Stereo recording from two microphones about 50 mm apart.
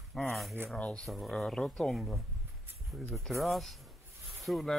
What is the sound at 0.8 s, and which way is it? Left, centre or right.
Speech, left.